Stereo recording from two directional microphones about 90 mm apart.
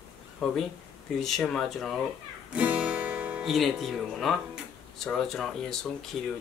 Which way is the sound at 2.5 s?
15° right (ahead or behind).